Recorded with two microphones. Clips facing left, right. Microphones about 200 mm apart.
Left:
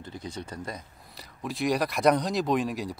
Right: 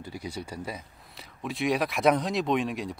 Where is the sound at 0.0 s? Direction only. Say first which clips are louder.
Right 1 dB; 10° right (ahead or behind).